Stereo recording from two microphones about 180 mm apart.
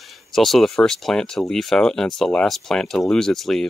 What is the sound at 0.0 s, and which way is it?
Speech, centre (ahead or behind).